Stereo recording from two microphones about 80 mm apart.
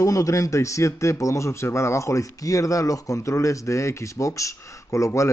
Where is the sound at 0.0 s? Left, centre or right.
Left.